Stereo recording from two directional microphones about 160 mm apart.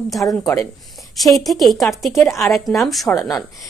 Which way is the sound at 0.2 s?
15° left (ahead or behind).